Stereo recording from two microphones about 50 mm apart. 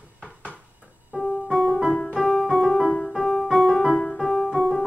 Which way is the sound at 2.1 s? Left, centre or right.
Centre.